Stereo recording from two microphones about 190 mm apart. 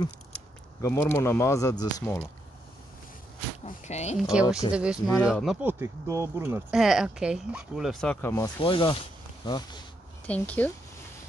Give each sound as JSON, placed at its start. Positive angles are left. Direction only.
{"t": 0.8, "sound": "speech", "side_deg": 15}
{"t": 3.6, "sound": "speech", "side_deg": 35}
{"t": 4.3, "sound": "speech", "side_deg": -5}
{"t": 8.5, "sound": "speech", "side_deg": 25}
{"t": 10.2, "sound": "speech", "side_deg": 5}